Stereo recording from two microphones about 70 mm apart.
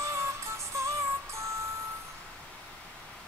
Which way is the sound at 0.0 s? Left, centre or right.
Right.